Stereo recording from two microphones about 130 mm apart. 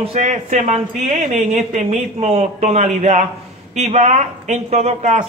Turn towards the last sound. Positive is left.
turn(degrees=-60)  # may be behind; listen again after turning